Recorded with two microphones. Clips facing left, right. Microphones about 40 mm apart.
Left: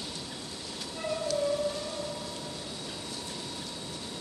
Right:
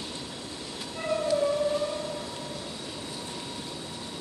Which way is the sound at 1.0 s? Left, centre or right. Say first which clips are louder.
Right 5 dB; centre.